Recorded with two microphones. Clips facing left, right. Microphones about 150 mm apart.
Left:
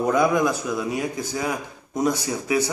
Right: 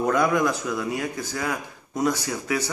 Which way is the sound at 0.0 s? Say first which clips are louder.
Left 2 dB; 15° left (ahead or behind).